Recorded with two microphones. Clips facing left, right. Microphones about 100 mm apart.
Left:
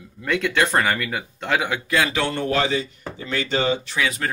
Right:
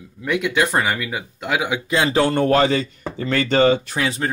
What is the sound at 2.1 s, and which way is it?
Speech, 45° right (ahead or behind).